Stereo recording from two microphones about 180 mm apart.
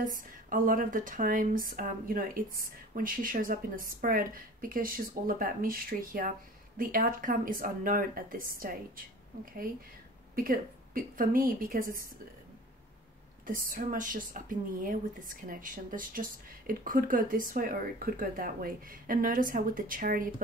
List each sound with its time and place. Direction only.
0.0 s speech: 50° right (ahead or behind)
13.5 s speech: 50° right (ahead or behind)